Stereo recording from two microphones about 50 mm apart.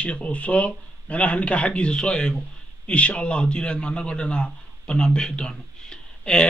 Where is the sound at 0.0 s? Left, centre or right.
Left.